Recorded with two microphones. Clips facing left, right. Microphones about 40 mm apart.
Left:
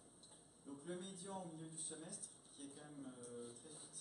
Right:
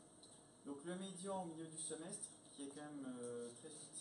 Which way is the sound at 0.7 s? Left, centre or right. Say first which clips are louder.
Right 1 dB; centre.